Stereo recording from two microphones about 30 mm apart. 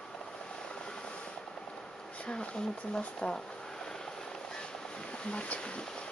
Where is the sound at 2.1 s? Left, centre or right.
Left.